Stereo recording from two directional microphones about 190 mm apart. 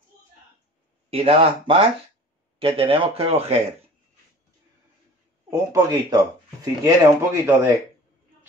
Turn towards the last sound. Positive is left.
turn(degrees=-15)  # may be behind; listen again after turning